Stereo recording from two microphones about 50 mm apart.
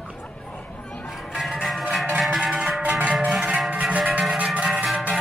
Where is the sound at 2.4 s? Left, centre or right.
Centre.